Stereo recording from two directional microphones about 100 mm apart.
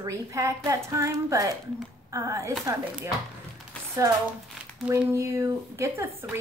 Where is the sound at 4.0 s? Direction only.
35° right (ahead or behind).